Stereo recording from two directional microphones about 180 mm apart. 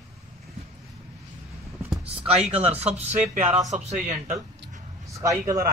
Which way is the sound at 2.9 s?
40° right (ahead or behind).